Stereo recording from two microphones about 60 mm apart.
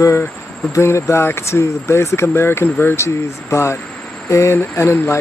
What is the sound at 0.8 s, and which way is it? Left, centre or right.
Speech, left.